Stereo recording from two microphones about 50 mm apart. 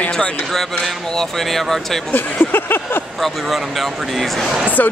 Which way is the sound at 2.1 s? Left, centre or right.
Left.